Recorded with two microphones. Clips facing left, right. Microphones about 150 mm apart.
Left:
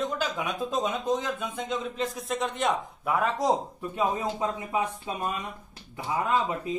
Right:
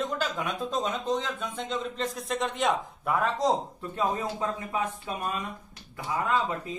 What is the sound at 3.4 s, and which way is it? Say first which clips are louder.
Speech: even; 10° left (ahead or behind).